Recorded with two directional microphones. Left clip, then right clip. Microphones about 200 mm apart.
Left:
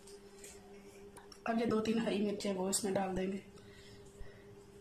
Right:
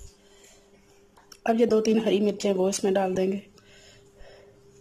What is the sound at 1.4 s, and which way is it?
Speech, 40° right (ahead or behind).